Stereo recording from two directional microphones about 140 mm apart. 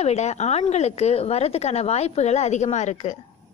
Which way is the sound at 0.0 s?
50° left (ahead or behind).